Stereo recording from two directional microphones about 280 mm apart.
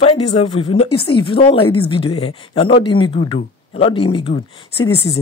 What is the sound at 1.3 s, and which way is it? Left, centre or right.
Speech, centre.